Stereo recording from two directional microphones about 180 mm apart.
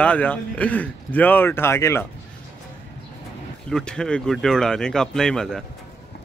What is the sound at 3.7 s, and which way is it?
Speech, 5° left (ahead or behind).